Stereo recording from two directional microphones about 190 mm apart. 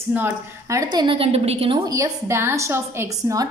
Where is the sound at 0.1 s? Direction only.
15° right (ahead or behind); by 1.8 s 30° right (ahead or behind).